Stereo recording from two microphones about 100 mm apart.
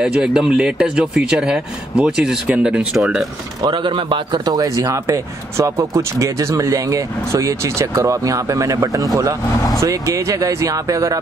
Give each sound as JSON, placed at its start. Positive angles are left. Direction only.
{"t": 0.0, "sound": "speech", "side_deg": -5}
{"t": 3.6, "sound": "speech", "side_deg": -55}
{"t": 4.5, "sound": "speech", "side_deg": -40}